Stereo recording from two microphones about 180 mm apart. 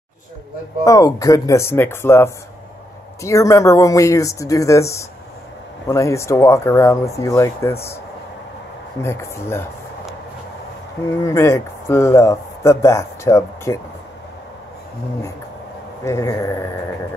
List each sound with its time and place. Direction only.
0.8 s speech: 20° left (ahead or behind)
9.0 s speech: 15° left (ahead or behind)
11.2 s speech: 15° left (ahead or behind)
16.0 s speech: 15° left (ahead or behind)